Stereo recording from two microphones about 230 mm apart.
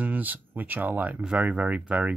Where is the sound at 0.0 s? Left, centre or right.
Centre.